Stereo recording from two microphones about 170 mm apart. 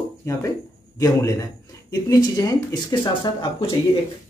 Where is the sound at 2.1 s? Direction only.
20° left (ahead or behind).